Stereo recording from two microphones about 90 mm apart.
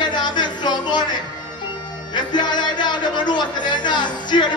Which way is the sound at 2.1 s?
55° left (ahead or behind).